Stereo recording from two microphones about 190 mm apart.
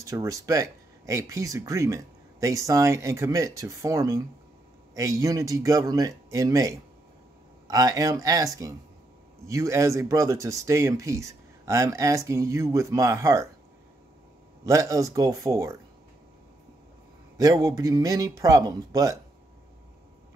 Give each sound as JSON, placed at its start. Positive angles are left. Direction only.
{"t": 0.0, "sound": "speech", "side_deg": -15}
{"t": 14.6, "sound": "speech", "side_deg": -15}
{"t": 17.4, "sound": "speech", "side_deg": -20}